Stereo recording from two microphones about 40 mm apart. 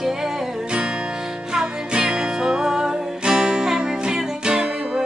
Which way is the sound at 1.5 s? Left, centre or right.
Centre.